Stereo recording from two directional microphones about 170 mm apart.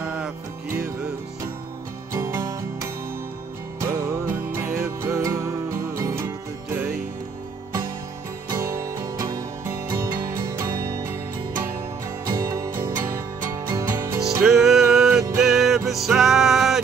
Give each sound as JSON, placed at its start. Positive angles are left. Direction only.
{"t": 0.0, "sound": "music", "side_deg": -5}
{"t": 2.1, "sound": "music", "side_deg": -15}
{"t": 6.7, "sound": "music", "side_deg": -5}
{"t": 8.5, "sound": "music", "side_deg": -20}
{"t": 12.3, "sound": "music", "side_deg": -15}
{"t": 14.4, "sound": "music", "side_deg": 0}